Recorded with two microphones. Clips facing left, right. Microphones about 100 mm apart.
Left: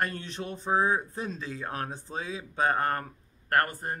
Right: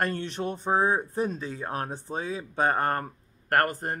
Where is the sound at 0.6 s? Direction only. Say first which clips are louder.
Right 1 dB; 25° right (ahead or behind).